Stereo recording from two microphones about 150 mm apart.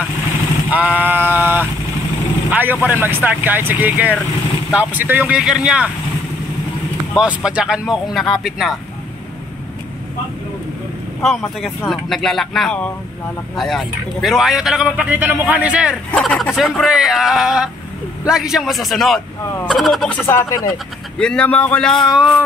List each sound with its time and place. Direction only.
0.7 s sheep: 10° right (ahead or behind)
2.5 s a man's voice: 10° right (ahead or behind)
7.2 s speech: 5° right (ahead or behind)
11.2 s a man's voice: centre (ahead or behind)
16.1 s speech: 5° left (ahead or behind)
20.2 s speech: 20° left (ahead or behind)
20.7 s speech: 5° left (ahead or behind)